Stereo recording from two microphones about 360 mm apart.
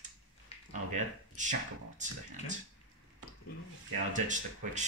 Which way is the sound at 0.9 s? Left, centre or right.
Right.